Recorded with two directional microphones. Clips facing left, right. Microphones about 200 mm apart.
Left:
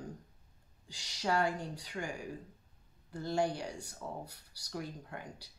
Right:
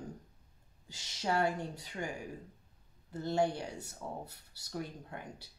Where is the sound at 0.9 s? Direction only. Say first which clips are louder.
Even; 20° right (ahead or behind).